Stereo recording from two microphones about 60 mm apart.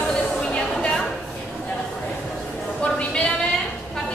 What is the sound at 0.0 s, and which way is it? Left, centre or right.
Music, centre.